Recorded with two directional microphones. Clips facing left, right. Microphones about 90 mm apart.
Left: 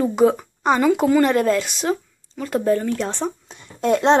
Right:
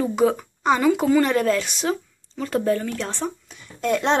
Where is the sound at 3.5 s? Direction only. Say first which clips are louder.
Left 4 dB; 35° left (ahead or behind).